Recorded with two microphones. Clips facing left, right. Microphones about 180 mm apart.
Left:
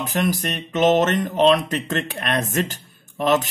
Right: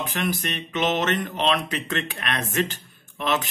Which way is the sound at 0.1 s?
40° left (ahead or behind).